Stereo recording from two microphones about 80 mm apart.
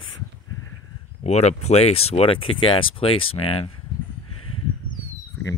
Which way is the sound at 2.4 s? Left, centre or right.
Left.